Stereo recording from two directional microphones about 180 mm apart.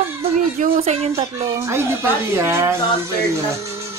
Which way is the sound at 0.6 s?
35° right (ahead or behind).